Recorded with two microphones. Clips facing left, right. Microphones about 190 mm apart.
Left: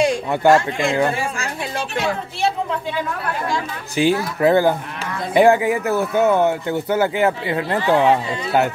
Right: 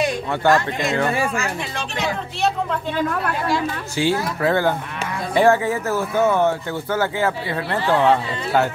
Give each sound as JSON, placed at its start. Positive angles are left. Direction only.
{"t": 0.5, "sound": "speech", "side_deg": 30}
{"t": 3.9, "sound": "speech", "side_deg": 15}